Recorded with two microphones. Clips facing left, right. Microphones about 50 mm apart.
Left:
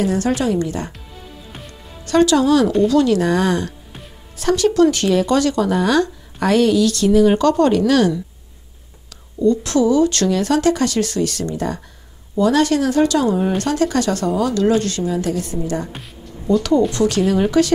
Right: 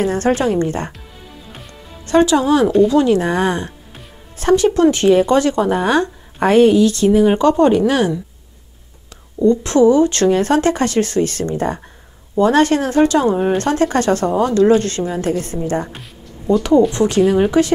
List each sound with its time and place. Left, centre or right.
0.0 s speech: right
2.0 s speech: right
9.4 s speech: right
15.9 s music: centre
16.9 s speech: right